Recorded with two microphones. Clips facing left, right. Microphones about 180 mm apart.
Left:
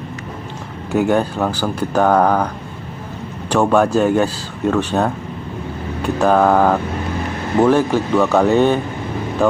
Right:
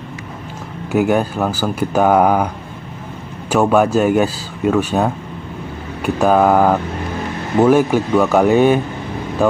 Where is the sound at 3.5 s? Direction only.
5° right (ahead or behind).